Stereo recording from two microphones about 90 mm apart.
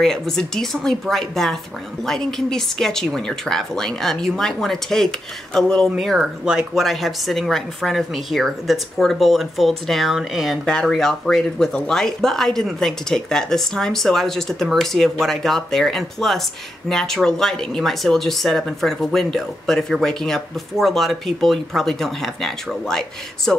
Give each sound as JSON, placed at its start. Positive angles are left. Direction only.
{"t": 0.0, "sound": "speech", "side_deg": 5}